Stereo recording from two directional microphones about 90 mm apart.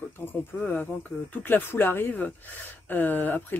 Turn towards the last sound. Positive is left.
turn(degrees=20)  # may be behind; listen again after turning